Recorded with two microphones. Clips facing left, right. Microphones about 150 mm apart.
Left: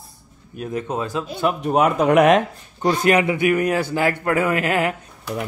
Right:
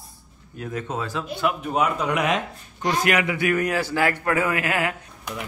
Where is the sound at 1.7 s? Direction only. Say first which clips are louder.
Left 11 dB; 55° left (ahead or behind).